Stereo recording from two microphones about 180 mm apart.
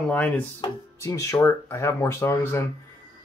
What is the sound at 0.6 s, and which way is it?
Speech, 20° left (ahead or behind).